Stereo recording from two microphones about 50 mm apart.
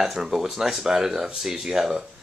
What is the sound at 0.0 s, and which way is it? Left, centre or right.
Speech, centre.